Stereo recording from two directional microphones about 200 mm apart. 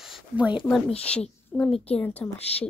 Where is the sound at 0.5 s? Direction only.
25° left (ahead or behind).